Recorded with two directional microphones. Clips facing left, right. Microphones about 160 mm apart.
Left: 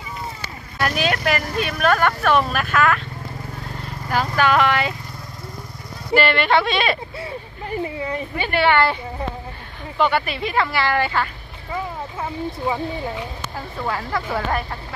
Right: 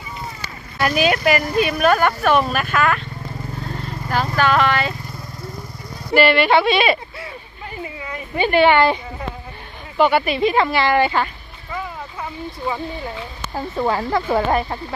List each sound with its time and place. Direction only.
0.7 s speech: 5° right (ahead or behind)
4.1 s speech: 10° left (ahead or behind)
6.1 s speech: 10° right (ahead or behind)
8.4 s speech: 15° right (ahead or behind)
9.9 s speech: 10° right (ahead or behind)
13.6 s speech: 30° right (ahead or behind)